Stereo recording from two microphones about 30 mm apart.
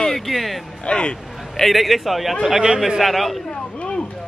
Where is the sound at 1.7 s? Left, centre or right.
Centre.